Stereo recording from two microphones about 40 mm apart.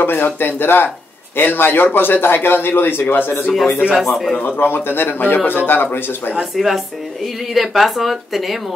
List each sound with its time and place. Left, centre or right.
0.0 s a man's voice: left
3.9 s speech: centre
4.4 s a man's voice: left
6.5 s speech: centre